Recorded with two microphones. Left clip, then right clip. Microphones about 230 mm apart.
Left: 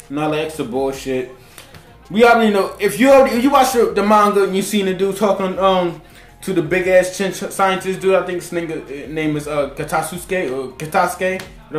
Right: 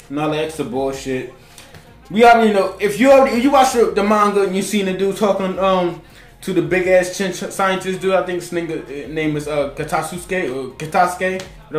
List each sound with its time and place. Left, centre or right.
0.1 s speech: centre